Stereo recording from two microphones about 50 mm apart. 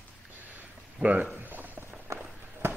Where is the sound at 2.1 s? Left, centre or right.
Right.